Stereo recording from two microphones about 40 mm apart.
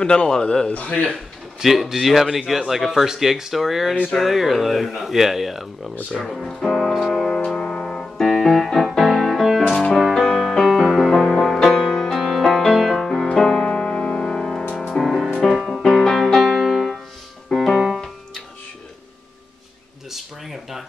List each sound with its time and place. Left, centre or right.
0.0 s speech: left
1.6 s speech: centre
6.9 s music: centre
7.3 s music: centre
14.8 s music: centre
15.5 s music: centre
17.5 s piano: centre
17.7 s piano: centre
20.1 s a sound: centre